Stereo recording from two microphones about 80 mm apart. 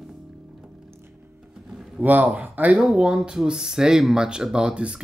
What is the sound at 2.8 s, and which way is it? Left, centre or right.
Speech, centre.